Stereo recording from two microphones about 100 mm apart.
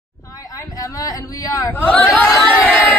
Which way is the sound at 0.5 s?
35° left (ahead or behind).